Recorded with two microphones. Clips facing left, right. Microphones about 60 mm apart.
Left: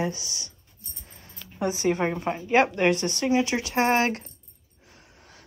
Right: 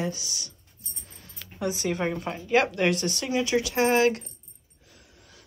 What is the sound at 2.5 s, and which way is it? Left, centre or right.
Speech, left.